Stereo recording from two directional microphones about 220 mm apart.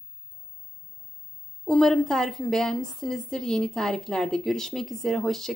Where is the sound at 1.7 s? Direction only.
Centre (ahead or behind).